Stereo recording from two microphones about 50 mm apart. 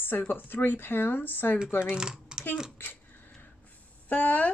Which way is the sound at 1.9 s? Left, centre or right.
Centre.